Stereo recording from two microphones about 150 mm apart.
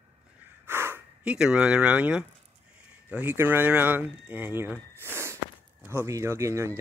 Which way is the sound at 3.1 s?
10° right (ahead or behind).